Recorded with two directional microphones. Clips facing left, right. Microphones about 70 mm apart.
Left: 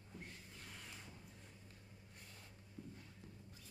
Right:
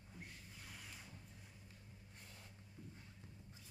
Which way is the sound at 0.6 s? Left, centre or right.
Centre.